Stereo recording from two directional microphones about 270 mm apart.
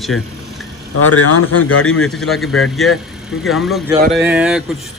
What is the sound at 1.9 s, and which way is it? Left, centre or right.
A man's voice, centre.